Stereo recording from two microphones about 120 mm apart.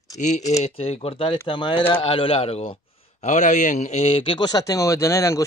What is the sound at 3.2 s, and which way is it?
A man's voice, 90° left.